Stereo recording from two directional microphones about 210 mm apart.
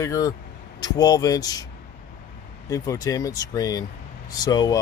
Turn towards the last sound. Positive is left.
turn(degrees=20)  # may be behind; listen again after turning